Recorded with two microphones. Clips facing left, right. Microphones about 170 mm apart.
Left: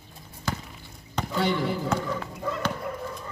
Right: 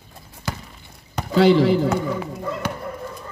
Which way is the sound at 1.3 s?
90° right.